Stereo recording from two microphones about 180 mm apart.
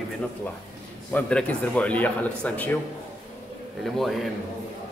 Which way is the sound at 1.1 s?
5° left (ahead or behind).